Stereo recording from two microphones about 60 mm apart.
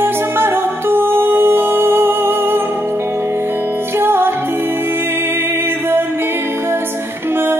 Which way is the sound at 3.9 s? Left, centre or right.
Right.